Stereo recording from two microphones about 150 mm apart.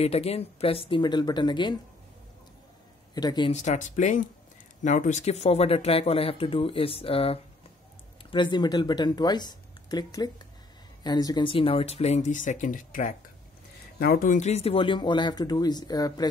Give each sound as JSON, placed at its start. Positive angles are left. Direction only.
{"t": 0.0, "sound": "speech", "side_deg": 45}
{"t": 3.2, "sound": "speech", "side_deg": 30}
{"t": 3.5, "sound": "speech", "side_deg": 55}
{"t": 13.9, "sound": "speech", "side_deg": 80}
{"t": 14.4, "sound": "speech", "side_deg": 45}